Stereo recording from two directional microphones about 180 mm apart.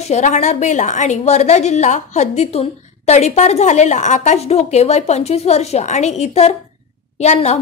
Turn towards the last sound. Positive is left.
turn(degrees=40)  # may be behind; listen again after turning